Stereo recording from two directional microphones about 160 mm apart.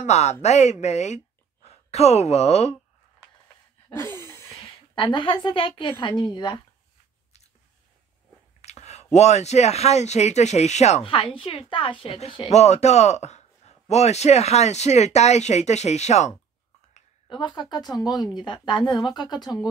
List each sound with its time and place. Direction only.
0.0 s speech: 45° left (ahead or behind)
3.9 s a sound: 15° left (ahead or behind)
4.9 s a woman's voice: 30° left (ahead or behind)
8.5 s speech: 45° left (ahead or behind)
17.3 s a woman's voice: 30° left (ahead or behind)